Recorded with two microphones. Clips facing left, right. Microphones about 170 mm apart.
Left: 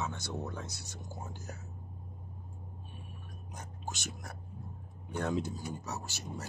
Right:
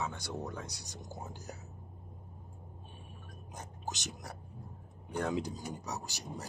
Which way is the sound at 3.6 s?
15° right (ahead or behind).